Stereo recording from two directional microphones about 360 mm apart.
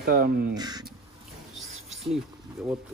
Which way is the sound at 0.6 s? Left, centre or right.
Centre.